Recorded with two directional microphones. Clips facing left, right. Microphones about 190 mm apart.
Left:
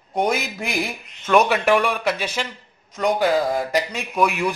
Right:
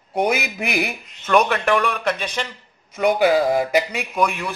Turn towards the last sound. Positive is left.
turn(degrees=5)  # may be behind; listen again after turning